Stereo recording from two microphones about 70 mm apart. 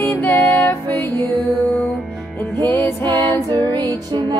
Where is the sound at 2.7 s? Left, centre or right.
Left.